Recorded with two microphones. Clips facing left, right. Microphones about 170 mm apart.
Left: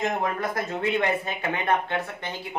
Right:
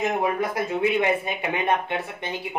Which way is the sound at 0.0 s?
10° right (ahead or behind).